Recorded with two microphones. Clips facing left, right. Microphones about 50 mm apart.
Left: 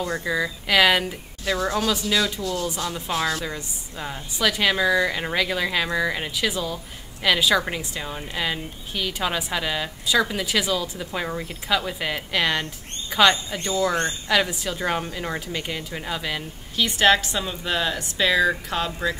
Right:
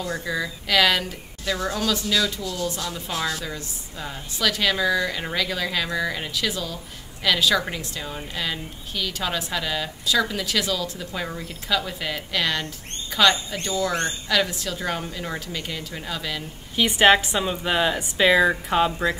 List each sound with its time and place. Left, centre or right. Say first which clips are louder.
0.0 s a woman's voice: left 2 dB; centre
16.7 s a woman's voice: right 2 dB; centre